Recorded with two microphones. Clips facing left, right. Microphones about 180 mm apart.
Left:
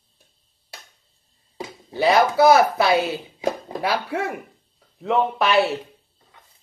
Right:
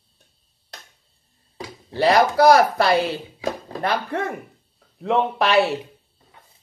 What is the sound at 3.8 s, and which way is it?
Speech, 10° left (ahead or behind).